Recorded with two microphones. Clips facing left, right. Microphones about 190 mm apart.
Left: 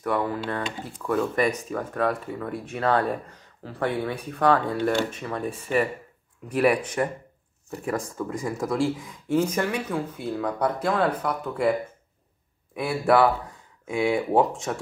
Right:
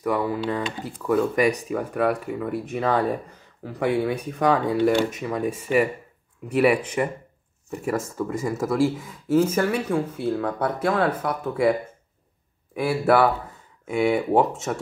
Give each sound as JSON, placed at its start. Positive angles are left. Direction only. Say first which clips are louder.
{"t": 0.0, "sound": "speech", "louder": "right 2 dB", "side_deg": -10}
{"t": 12.7, "sound": "speech", "louder": "right 1 dB", "side_deg": -5}